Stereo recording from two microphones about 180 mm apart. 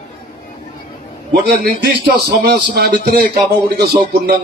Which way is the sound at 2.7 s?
65° right (ahead or behind).